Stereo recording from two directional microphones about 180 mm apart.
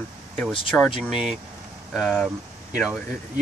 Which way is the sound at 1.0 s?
Centre (ahead or behind).